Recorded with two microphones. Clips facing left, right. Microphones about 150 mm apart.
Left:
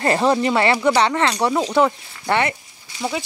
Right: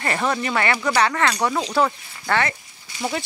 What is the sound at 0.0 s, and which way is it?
Speech, 30° left (ahead or behind).